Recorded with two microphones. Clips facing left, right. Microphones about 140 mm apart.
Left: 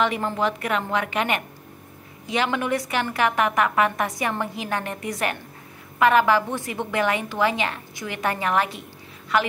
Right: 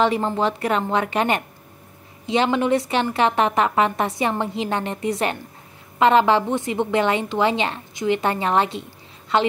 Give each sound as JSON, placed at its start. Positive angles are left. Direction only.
{"t": 0.0, "sound": "a woman's voice", "side_deg": -30}